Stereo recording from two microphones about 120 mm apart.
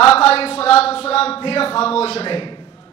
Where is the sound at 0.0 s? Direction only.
55° left (ahead or behind).